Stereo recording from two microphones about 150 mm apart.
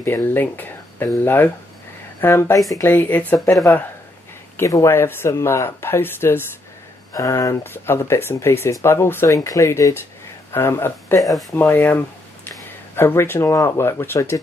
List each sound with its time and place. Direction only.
0.0 s speech: 15° left (ahead or behind)
4.6 s speech: 20° left (ahead or behind)